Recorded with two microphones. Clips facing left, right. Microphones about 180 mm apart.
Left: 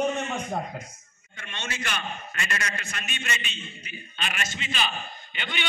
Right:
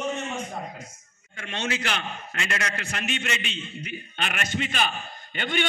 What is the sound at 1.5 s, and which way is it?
A man's voice, 70° right (ahead or behind).